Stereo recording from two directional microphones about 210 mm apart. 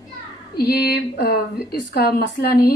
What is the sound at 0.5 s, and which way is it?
Speech, 50° left (ahead or behind).